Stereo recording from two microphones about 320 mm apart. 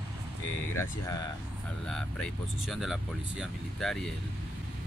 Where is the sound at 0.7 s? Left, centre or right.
Centre.